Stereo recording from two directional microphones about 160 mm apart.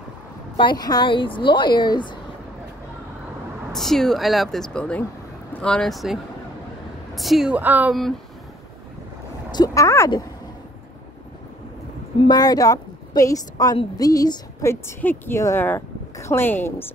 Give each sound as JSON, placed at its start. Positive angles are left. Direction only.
{"t": 0.6, "sound": "a woman's voice", "side_deg": 25}
{"t": 3.7, "sound": "speech", "side_deg": 0}
{"t": 7.2, "sound": "a woman's voice", "side_deg": 0}
{"t": 9.5, "sound": "a woman's voice", "side_deg": 25}
{"t": 12.3, "sound": "a woman's voice", "side_deg": 25}